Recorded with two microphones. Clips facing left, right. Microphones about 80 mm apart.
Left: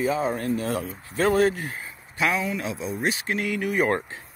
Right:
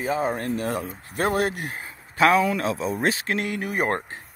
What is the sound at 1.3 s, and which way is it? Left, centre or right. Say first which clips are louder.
Speech: left 3 dB; right.